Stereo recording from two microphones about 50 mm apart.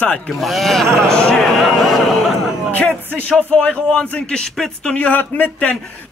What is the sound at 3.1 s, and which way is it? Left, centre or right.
Speech, left.